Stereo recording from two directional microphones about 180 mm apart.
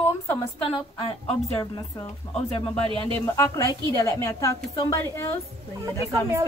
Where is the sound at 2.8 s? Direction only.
30° right (ahead or behind).